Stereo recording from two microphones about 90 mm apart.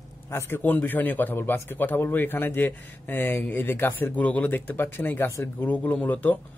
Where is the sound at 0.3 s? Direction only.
25° left (ahead or behind).